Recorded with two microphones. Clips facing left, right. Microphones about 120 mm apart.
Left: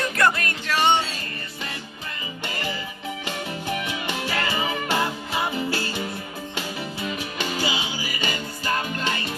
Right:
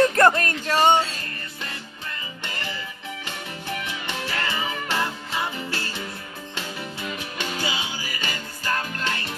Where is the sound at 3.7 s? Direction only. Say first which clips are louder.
Left 1 dB; 15° left (ahead or behind).